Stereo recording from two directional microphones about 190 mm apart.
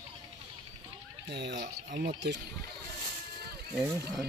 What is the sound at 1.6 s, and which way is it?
Speech, 45° right (ahead or behind).